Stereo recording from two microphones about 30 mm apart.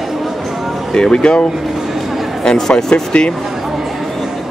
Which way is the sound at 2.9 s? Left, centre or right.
Left.